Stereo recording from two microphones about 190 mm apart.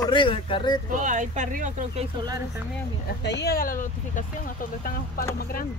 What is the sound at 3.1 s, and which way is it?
Speech, 60° left (ahead or behind).